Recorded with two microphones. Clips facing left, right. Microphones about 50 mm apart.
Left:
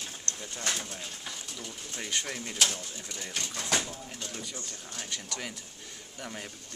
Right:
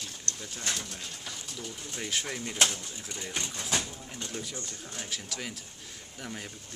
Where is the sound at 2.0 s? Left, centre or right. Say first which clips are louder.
Right 1 dB; centre.